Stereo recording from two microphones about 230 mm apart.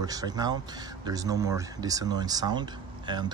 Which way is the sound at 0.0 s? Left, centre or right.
Centre.